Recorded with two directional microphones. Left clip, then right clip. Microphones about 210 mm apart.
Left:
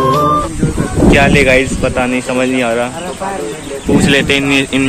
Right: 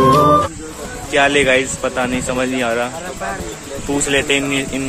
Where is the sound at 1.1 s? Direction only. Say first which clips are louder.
Left 2 dB; 20° right (ahead or behind).